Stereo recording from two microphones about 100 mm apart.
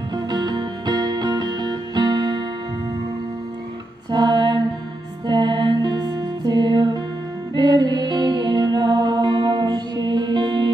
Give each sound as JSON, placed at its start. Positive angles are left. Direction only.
{"t": 0.1, "sound": "music", "side_deg": -45}
{"t": 4.1, "sound": "music", "side_deg": -50}